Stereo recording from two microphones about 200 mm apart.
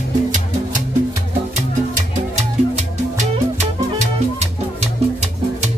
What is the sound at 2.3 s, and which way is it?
Music, 35° right (ahead or behind).